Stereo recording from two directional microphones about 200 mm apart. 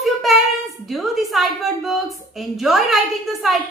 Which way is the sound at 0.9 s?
Centre (ahead or behind).